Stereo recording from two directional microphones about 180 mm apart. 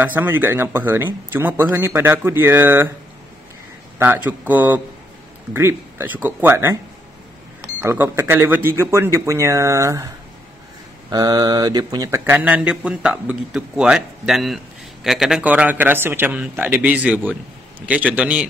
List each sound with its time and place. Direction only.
0.0 s speech: 10° right (ahead or behind)
4.0 s speech: 10° right (ahead or behind)